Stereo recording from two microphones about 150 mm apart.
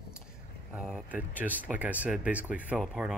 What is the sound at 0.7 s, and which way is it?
Speech, 5° right (ahead or behind).